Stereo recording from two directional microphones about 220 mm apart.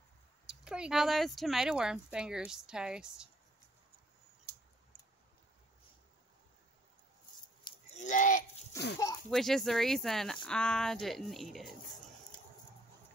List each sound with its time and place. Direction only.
0.5 s speech: 5° right (ahead or behind)
4.5 s a sound: 45° right (ahead or behind)
7.9 s a child's voice: 35° left (ahead or behind)
8.7 s speech: 15° left (ahead or behind)
9.3 s speech: centre (ahead or behind)